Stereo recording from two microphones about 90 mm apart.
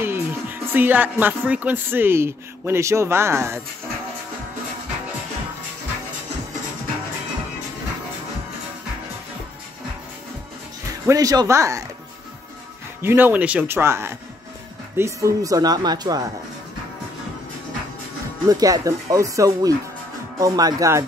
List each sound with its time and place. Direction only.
0.0 s speech: 25° right (ahead or behind)
11.1 s speech: 40° right (ahead or behind)
13.0 s speech: 25° right (ahead or behind)
13.7 s speech: 30° right (ahead or behind); by 16.3 s 45° right (ahead or behind)
18.5 s speech: 40° right (ahead or behind)